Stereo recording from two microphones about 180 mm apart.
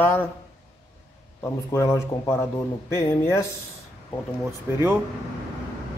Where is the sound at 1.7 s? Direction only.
15° left (ahead or behind).